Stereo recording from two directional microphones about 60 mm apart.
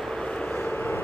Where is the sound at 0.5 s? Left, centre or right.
Left.